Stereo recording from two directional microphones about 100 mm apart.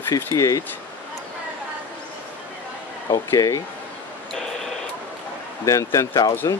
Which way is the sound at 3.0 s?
40° left (ahead or behind).